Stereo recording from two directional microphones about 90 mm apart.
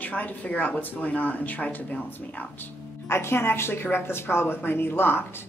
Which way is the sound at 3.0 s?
30° left (ahead or behind).